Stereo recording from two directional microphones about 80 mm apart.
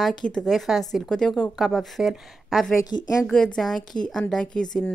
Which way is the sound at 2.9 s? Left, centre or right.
Left.